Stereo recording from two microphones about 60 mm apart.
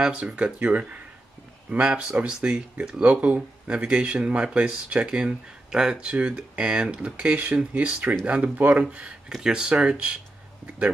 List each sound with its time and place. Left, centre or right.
0.0 s speech: centre
9.3 s speech: centre